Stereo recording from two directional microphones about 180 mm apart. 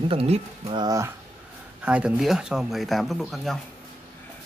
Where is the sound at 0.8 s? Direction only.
15° right (ahead or behind).